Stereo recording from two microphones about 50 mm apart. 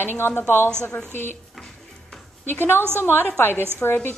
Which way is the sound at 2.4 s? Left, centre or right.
Left.